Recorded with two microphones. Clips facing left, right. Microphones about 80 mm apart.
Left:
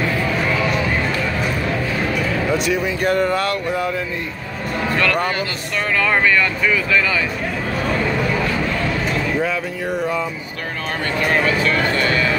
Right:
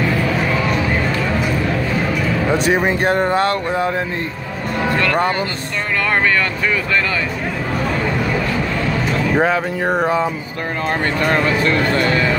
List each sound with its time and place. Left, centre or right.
2.5 s speech: right
4.9 s speech: right
9.4 s speech: right